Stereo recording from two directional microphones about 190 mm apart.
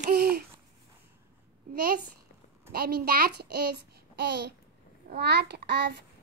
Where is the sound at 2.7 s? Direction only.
55° right (ahead or behind).